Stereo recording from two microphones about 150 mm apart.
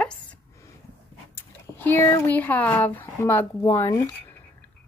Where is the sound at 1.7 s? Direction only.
15° left (ahead or behind).